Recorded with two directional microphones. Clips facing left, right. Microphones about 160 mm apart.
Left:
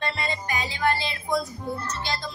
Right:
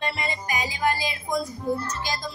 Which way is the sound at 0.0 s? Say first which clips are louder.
Even; 15° right (ahead or behind).